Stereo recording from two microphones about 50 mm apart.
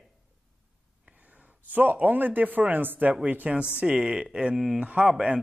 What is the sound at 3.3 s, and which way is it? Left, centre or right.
Speech, right.